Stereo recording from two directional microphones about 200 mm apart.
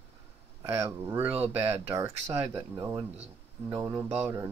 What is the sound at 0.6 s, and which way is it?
Speech, 15° right (ahead or behind).